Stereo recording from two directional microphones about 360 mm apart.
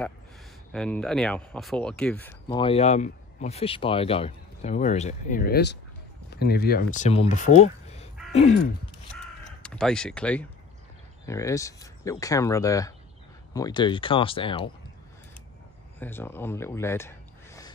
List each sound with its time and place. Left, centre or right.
0.7 s speech: centre
9.1 s crow: centre
11.2 s speech: centre
16.0 s speech: centre